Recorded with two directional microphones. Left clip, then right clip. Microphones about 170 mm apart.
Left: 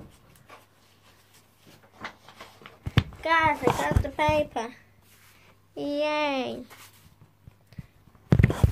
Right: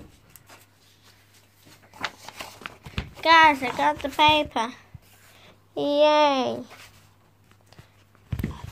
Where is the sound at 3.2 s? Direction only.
55° right (ahead or behind).